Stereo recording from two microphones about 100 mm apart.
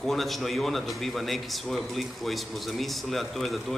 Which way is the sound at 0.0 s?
Centre (ahead or behind).